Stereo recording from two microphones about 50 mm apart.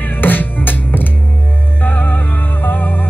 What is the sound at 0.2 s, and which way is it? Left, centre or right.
Music, left.